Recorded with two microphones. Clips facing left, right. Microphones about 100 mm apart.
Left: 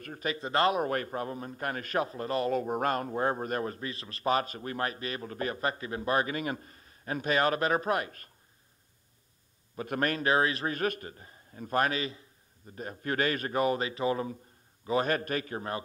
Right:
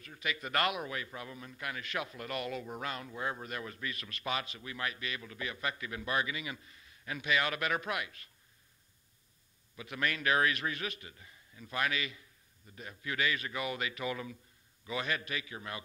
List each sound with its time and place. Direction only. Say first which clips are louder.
0.0 s a man's voice: left 5 dB; 45° left (ahead or behind)
0.8 s a man's voice: left 10 dB; 50° left (ahead or behind)
9.8 s a man's voice: left 6 dB; 45° left (ahead or behind)
10.8 s a man's voice: left 10 dB; 45° left (ahead or behind)